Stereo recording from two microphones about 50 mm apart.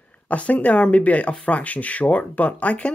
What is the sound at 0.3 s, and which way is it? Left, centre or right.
Speech, left.